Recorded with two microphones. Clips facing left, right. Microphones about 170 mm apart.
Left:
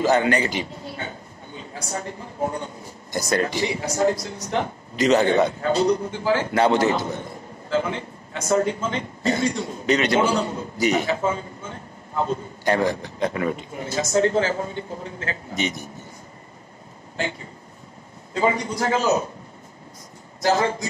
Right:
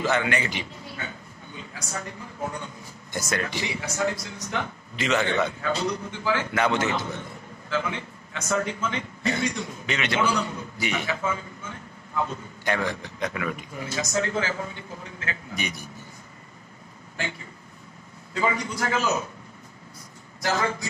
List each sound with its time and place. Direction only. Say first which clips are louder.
0.0 s a man's voice: left 6 dB; 40° left (ahead or behind)
15.5 s a man's voice: left 8 dB; 20° left (ahead or behind)
18.3 s speech: left 5 dB; 30° left (ahead or behind)
20.4 s a man's voice: left 6 dB; 30° left (ahead or behind)